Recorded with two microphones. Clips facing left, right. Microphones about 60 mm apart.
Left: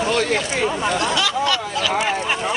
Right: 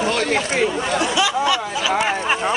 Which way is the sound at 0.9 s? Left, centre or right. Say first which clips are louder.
Right 1 dB; centre.